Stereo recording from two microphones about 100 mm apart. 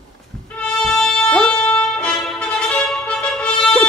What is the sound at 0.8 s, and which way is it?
Music, 5° left (ahead or behind).